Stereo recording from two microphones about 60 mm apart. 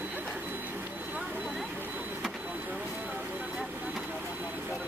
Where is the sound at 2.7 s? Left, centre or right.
Centre.